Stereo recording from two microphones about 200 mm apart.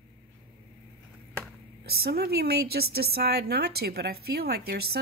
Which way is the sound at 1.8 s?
50° right (ahead or behind).